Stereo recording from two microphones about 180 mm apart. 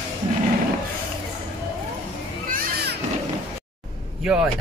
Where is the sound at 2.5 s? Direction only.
65° right (ahead or behind).